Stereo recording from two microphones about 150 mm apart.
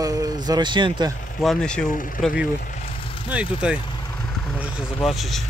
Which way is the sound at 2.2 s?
5° right (ahead or behind).